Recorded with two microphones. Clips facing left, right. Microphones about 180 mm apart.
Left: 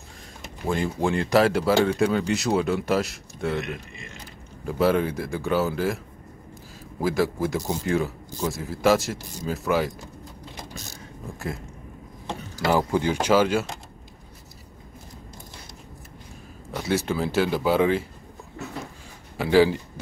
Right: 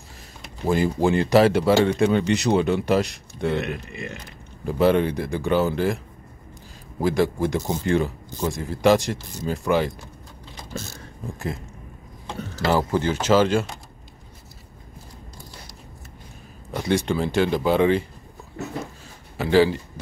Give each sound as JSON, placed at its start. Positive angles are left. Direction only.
{"t": 0.7, "sound": "speech", "side_deg": 0}
{"t": 3.9, "sound": "speech", "side_deg": -65}
{"t": 4.6, "sound": "speech", "side_deg": 0}
{"t": 7.0, "sound": "speech", "side_deg": 5}
{"t": 11.3, "sound": "speech", "side_deg": 0}
{"t": 12.3, "sound": "speech", "side_deg": 15}
{"t": 16.7, "sound": "speech", "side_deg": 5}
{"t": 19.3, "sound": "a man's voice", "side_deg": 10}